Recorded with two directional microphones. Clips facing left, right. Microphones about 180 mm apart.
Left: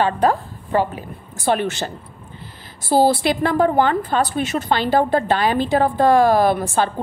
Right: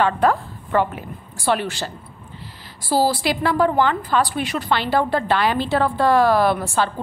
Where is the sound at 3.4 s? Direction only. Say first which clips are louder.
Left 1 dB; 45° left (ahead or behind).